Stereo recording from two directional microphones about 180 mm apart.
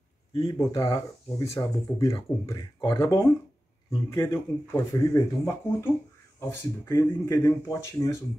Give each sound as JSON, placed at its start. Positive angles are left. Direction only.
{"t": 0.3, "sound": "speech", "side_deg": 20}